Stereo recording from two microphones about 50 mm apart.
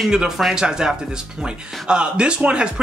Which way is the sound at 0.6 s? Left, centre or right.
Centre.